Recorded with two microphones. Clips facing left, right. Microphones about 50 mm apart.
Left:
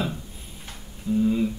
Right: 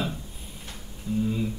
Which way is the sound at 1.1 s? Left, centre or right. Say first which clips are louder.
Left 4 dB; left.